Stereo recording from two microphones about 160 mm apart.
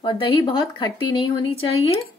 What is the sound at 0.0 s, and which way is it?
A woman's voice, 30° left (ahead or behind).